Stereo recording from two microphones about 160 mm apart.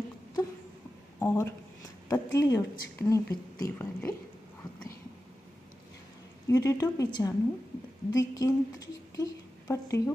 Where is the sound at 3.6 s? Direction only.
15° left (ahead or behind).